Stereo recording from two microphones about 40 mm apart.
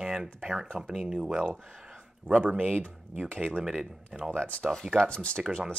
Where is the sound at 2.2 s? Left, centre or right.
Right.